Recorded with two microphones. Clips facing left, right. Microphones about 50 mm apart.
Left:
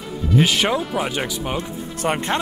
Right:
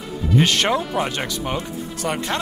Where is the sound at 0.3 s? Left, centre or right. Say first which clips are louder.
Even; centre.